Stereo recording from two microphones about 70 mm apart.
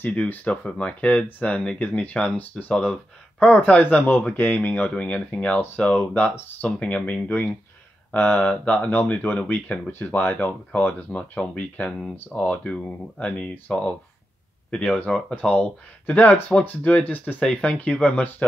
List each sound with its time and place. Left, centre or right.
0.0 s speech: left